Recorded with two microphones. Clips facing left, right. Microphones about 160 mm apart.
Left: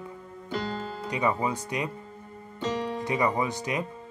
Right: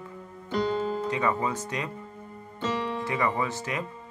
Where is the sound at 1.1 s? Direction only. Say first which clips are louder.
Left 5 dB; 15° left (ahead or behind).